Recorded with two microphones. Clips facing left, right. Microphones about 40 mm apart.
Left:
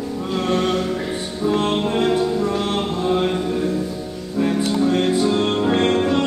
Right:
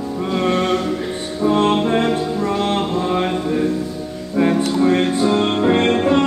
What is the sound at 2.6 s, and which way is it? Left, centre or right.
Mantra, right.